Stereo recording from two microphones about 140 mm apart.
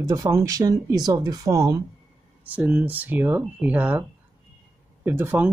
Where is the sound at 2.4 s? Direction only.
10° right (ahead or behind).